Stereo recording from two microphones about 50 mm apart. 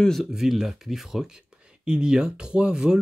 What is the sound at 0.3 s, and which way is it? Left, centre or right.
Speech, centre.